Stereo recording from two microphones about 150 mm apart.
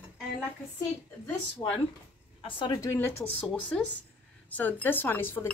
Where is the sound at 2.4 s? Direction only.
35° left (ahead or behind).